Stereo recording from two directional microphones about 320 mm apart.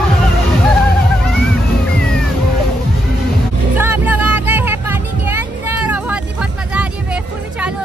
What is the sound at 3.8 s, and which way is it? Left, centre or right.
Music, centre.